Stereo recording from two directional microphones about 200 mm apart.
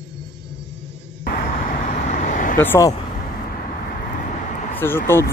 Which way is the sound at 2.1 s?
40° left (ahead or behind).